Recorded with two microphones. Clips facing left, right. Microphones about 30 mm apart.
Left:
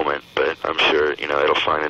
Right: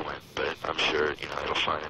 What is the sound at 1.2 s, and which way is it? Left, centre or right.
Speech, left.